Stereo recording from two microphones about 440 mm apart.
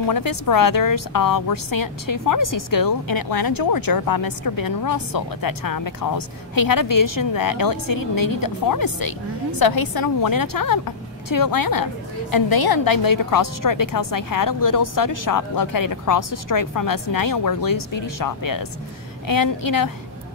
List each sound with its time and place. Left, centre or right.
0.0 s speech: left